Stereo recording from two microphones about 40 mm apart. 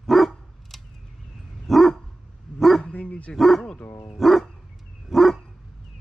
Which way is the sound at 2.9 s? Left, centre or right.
Left.